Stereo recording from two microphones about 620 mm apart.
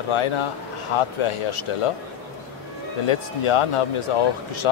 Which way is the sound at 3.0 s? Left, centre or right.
Left.